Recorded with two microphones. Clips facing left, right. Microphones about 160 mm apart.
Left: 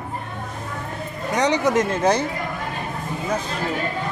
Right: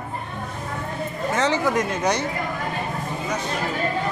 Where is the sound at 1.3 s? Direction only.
15° left (ahead or behind).